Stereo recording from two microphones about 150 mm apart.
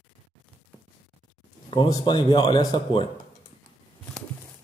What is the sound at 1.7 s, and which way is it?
Speech, 30° left (ahead or behind).